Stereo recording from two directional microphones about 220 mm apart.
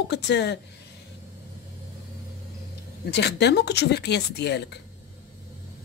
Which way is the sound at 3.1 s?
50° left (ahead or behind).